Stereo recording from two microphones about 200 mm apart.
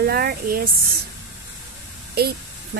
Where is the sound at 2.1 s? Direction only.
50° right (ahead or behind).